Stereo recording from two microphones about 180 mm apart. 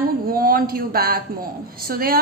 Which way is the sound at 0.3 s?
55° right (ahead or behind).